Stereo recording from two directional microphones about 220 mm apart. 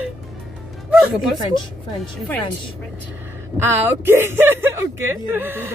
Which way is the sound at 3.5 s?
10° right (ahead or behind).